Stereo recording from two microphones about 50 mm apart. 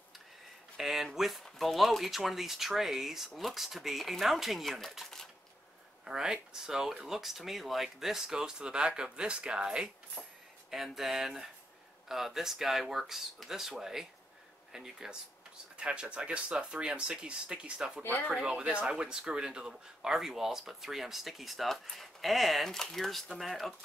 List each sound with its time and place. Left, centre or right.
0.7 s a sound: centre
1.1 s speech: centre
6.0 s speech: centre
10.2 s a sound: centre
10.7 s speech: centre
15.8 s speech: right
18.0 s speech: left
18.3 s speech: right; by 23.7 s centre